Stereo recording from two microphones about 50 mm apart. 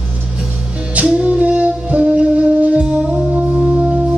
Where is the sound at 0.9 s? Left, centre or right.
Right.